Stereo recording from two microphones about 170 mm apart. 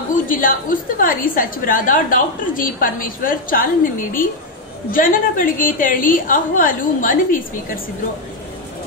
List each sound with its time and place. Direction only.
0.1 s a woman's voice: 55° left (ahead or behind)